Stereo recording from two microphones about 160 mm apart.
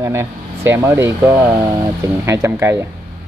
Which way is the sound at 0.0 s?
15° right (ahead or behind).